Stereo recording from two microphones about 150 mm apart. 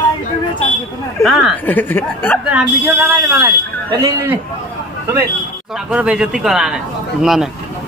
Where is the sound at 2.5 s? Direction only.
10° right (ahead or behind).